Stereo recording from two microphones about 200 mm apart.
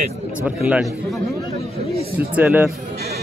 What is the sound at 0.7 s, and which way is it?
Speech, centre (ahead or behind).